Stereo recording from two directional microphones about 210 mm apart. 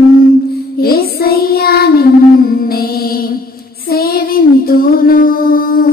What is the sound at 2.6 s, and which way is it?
Music, 45° left (ahead or behind).